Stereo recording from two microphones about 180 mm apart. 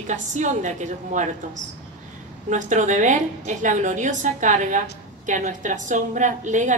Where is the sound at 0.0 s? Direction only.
40° right (ahead or behind).